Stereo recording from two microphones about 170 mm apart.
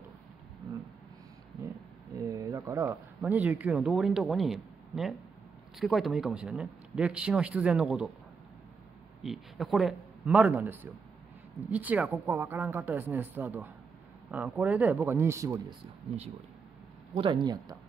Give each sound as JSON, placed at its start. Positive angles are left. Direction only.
{"t": 2.1, "sound": "a sound", "side_deg": -20}
{"t": 3.2, "sound": "speech", "side_deg": -10}
{"t": 9.2, "sound": "a man's voice", "side_deg": 0}
{"t": 17.1, "sound": "speech", "side_deg": -30}